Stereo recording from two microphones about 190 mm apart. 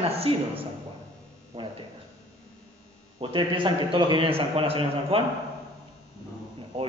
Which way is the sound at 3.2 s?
25° right (ahead or behind).